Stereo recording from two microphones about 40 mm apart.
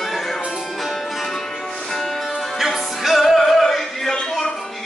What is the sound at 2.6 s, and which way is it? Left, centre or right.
Music, centre.